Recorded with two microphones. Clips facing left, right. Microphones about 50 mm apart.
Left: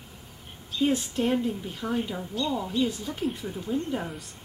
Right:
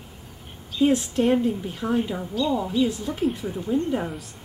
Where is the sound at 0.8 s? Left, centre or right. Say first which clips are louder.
Right 5 dB; centre.